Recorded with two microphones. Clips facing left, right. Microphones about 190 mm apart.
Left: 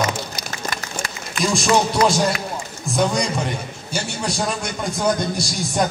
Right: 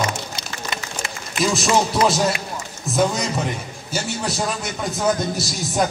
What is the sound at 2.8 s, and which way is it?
A man's voice, 5° right (ahead or behind).